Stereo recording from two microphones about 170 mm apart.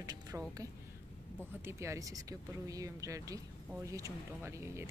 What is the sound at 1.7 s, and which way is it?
Speech, 15° right (ahead or behind).